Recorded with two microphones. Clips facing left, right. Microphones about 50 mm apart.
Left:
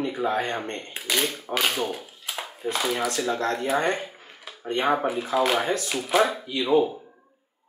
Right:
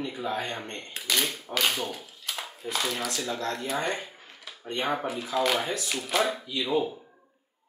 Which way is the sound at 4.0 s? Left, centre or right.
Centre.